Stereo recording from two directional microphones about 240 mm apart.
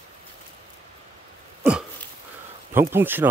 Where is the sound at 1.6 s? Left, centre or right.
Centre.